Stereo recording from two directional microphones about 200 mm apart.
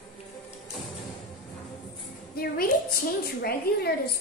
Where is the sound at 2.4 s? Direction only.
50° left (ahead or behind).